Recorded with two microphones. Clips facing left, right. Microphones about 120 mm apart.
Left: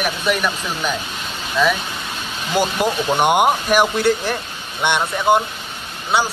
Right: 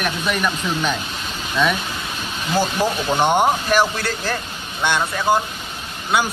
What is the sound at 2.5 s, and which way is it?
Speech, 15° left (ahead or behind).